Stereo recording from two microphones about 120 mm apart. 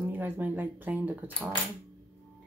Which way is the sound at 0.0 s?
15° right (ahead or behind).